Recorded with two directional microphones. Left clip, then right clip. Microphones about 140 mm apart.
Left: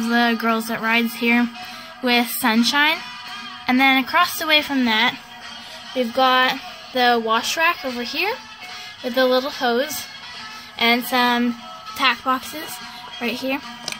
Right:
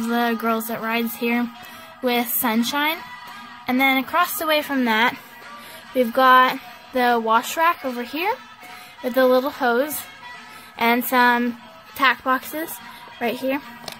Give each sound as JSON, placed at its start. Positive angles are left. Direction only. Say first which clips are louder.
{"t": 0.1, "sound": "a woman's voice", "louder": "left 3 dB", "side_deg": -20}
{"t": 5.9, "sound": "a woman's voice", "louder": "right 3 dB", "side_deg": -25}